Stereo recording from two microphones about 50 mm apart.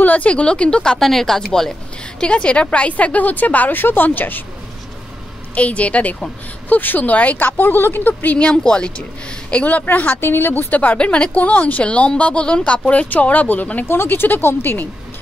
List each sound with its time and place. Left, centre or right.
0.0 s a woman's voice: left; by 1.7 s centre
2.1 s a woman's voice: left
5.5 s a woman's voice: left
6.7 s a woman's voice: left
8.4 s a woman's voice: left
9.9 s a woman's voice: left
11.0 s a woman's voice: left
13.8 s speech: left